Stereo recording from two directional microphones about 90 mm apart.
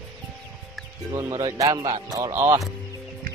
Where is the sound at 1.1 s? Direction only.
40° right (ahead or behind).